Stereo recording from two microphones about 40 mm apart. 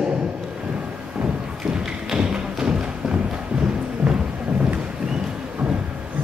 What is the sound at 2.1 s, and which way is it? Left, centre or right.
Music, centre.